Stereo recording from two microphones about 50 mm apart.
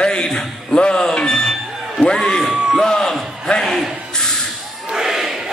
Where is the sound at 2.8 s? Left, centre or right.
Centre.